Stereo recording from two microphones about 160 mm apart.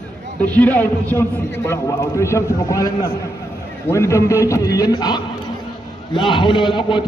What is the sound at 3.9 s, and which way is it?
A man's voice, 15° left (ahead or behind).